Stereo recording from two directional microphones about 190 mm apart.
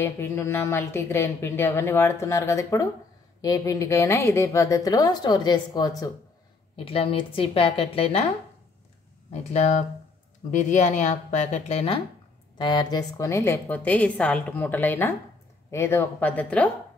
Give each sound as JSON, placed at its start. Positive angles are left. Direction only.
{"t": 0.0, "sound": "a woman's voice", "side_deg": 15}
{"t": 6.8, "sound": "a woman's voice", "side_deg": 30}
{"t": 9.3, "sound": "speech", "side_deg": 35}